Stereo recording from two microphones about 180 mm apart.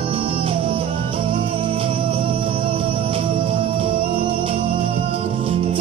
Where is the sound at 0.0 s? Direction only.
30° right (ahead or behind).